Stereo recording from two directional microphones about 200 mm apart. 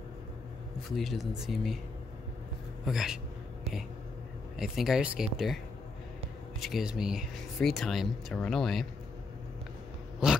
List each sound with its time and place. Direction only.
0.9 s speech: centre (ahead or behind)
2.8 s speech: centre (ahead or behind)
4.6 s speech: centre (ahead or behind)
6.6 s speech: centre (ahead or behind)